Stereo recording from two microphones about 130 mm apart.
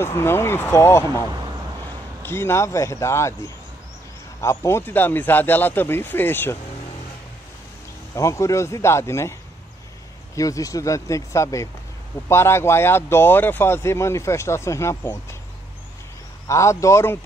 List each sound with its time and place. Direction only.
0.0 s speech: 20° left (ahead or behind)
2.2 s speech: 20° left (ahead or behind)
4.4 s speech: 20° left (ahead or behind)
8.1 s speech: 25° left (ahead or behind)
10.3 s speech: 25° left (ahead or behind)
16.4 s speech: 25° left (ahead or behind)